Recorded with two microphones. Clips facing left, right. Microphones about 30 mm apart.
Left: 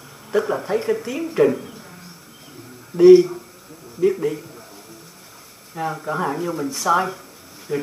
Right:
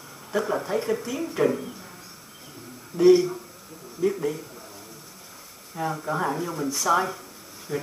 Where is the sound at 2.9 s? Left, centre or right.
Centre.